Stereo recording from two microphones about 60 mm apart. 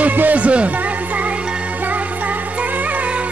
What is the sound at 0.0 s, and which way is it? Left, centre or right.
Music, right.